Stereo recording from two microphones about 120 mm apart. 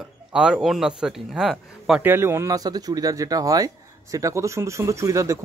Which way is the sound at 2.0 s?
20° right (ahead or behind).